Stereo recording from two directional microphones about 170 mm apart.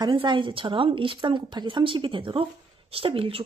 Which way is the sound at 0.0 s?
30° right (ahead or behind).